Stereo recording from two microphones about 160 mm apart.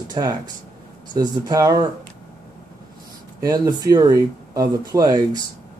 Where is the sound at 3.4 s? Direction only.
25° right (ahead or behind).